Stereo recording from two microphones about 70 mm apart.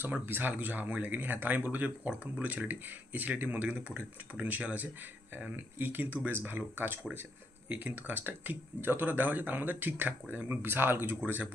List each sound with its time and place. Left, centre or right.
0.0 s speech: right